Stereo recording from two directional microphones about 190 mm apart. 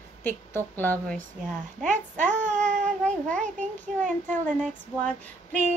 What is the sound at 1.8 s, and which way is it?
A child's voice, 40° right (ahead or behind).